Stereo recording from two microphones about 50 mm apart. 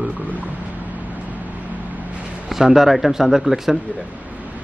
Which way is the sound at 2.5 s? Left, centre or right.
Centre.